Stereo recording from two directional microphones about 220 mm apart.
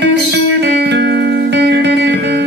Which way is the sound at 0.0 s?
50° right (ahead or behind).